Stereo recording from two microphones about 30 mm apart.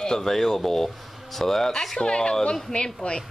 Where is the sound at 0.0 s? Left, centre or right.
Centre.